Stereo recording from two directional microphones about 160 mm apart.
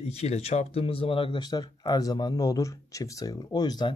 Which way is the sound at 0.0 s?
40° left (ahead or behind).